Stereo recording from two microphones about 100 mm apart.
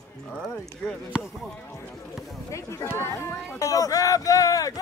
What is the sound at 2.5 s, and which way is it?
Speech, 25° left (ahead or behind).